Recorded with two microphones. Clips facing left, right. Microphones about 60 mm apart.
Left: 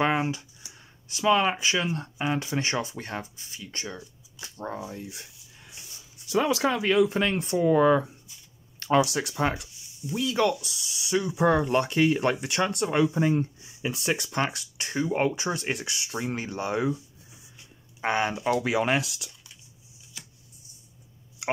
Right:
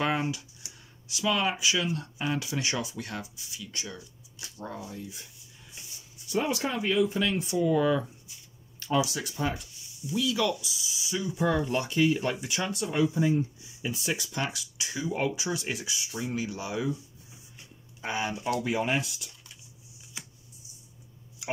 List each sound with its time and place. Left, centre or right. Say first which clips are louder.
0.0 s speech: left 3 dB; left
5.0 s a sound: left 2 dB; left
6.2 s speech: left 5 dB; left
7.2 s speech: left 2 dB; left
8.7 s speech: left 5 dB; left
10.1 s speech: left 3 dB; left
18.0 s speech: left 5 dB; left